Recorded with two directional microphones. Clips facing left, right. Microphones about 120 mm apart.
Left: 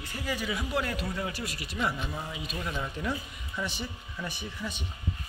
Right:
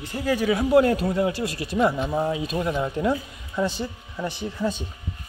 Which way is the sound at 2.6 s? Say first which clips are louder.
Right 6 dB; 30° right (ahead or behind).